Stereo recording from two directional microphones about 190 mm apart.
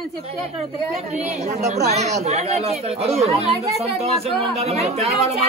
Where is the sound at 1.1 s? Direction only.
35° right (ahead or behind).